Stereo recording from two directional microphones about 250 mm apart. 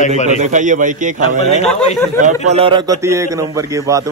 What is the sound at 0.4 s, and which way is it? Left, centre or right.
A man's voice, right.